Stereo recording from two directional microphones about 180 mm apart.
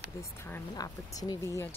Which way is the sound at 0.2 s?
15° left (ahead or behind).